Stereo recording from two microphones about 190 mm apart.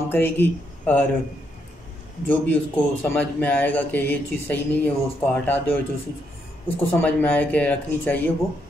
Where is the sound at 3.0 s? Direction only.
10° left (ahead or behind).